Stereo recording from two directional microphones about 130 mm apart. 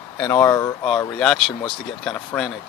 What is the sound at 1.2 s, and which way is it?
Speech, 5° left (ahead or behind).